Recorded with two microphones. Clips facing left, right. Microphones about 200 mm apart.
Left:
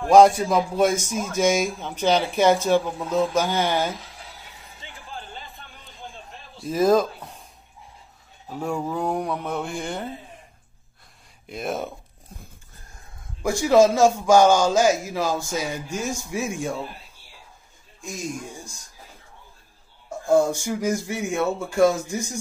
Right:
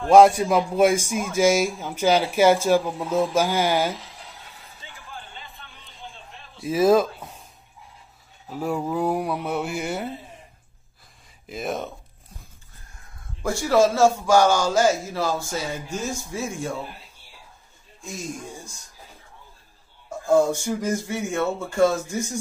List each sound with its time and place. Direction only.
0.1 s speech: 5° right (ahead or behind)
6.6 s speech: 5° right (ahead or behind)
8.5 s speech: 5° right (ahead or behind)
11.4 s speech: centre (ahead or behind)
13.4 s speech: 15° left (ahead or behind)
20.6 s speech: 10° left (ahead or behind)